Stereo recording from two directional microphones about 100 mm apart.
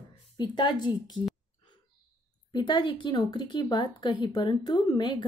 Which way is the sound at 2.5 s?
50° left (ahead or behind).